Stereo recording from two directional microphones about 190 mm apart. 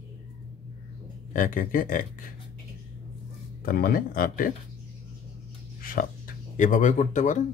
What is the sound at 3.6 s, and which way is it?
Speech, 50° left (ahead or behind).